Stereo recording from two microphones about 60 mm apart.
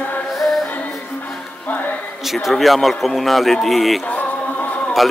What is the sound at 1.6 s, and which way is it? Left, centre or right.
Music, left.